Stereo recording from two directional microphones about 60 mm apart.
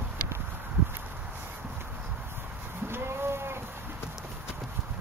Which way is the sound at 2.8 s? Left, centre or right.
Right.